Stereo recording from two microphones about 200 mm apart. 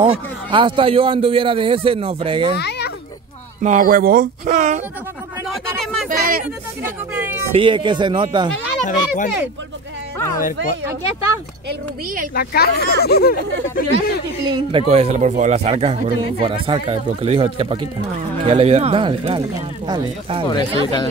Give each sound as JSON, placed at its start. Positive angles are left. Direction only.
{"t": 0.5, "sound": "a man's voice", "side_deg": -25}
{"t": 2.5, "sound": "a child's voice", "side_deg": 60}
{"t": 3.6, "sound": "speech", "side_deg": -40}
{"t": 6.0, "sound": "a sound", "side_deg": -45}
{"t": 7.5, "sound": "a man's voice", "side_deg": -25}
{"t": 8.8, "sound": "a child's voice", "side_deg": 40}
{"t": 10.1, "sound": "a sound", "side_deg": 15}
{"t": 12.4, "sound": "speech", "side_deg": 50}
{"t": 14.5, "sound": "a man's voice", "side_deg": -25}
{"t": 20.4, "sound": "speech", "side_deg": 20}